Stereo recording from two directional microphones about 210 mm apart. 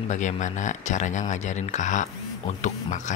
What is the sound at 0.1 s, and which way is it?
Speech, 35° left (ahead or behind).